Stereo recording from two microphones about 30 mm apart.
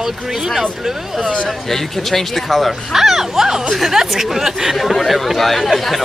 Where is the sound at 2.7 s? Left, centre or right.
Centre.